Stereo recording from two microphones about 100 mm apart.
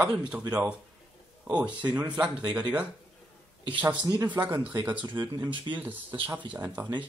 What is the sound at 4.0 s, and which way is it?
Speech, 35° right (ahead or behind).